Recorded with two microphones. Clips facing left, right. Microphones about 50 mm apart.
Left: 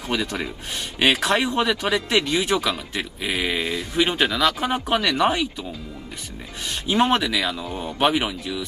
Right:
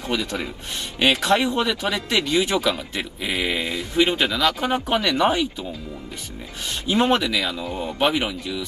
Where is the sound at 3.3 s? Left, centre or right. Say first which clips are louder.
Even; centre.